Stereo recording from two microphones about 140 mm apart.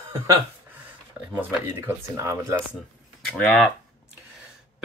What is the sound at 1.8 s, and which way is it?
Speech, 20° right (ahead or behind).